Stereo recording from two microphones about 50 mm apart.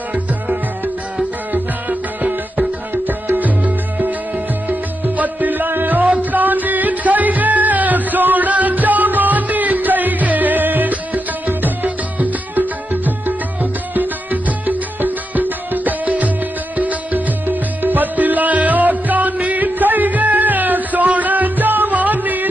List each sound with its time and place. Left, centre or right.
1.5 s music: right
2.9 s music: right